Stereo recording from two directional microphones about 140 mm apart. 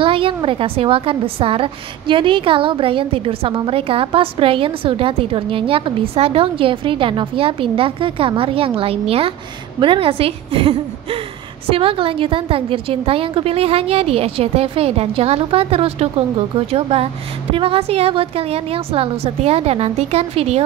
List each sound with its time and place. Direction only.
0.0 s a woman's voice: 40° right (ahead or behind)